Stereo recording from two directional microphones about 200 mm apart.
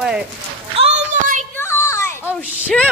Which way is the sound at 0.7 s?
30° right (ahead or behind).